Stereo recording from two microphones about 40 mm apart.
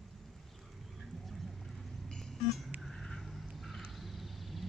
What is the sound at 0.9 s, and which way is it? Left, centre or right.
Vehicle, centre.